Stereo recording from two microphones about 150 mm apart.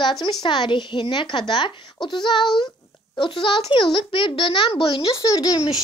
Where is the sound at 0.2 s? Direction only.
25° left (ahead or behind).